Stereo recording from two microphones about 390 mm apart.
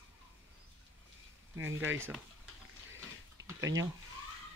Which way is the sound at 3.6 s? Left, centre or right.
Centre.